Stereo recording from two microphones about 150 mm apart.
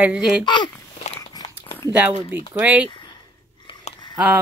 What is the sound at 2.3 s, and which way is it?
Speech, 10° right (ahead or behind).